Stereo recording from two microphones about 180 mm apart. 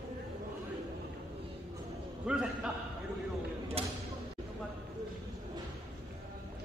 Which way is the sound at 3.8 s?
35° right (ahead or behind).